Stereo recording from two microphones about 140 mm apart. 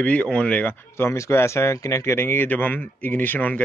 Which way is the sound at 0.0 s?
10° left (ahead or behind).